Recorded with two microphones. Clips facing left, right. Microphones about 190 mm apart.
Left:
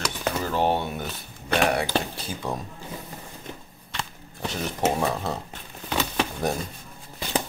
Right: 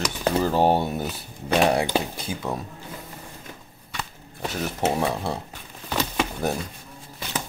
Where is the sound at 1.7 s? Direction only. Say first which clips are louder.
Right 3 dB; 25° right (ahead or behind).